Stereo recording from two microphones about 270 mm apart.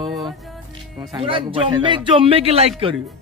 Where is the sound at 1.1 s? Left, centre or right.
Centre.